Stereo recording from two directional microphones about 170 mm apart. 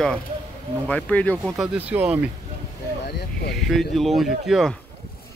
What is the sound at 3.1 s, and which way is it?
Speech, 70° left (ahead or behind).